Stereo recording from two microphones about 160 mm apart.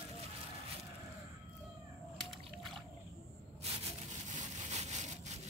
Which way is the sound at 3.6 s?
40° right (ahead or behind).